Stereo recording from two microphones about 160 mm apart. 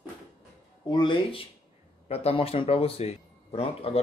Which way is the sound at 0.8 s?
30° left (ahead or behind).